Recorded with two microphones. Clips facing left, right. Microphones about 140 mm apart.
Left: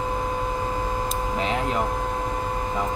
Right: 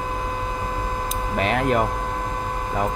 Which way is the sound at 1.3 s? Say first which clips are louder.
Right 6 dB; 65° right (ahead or behind).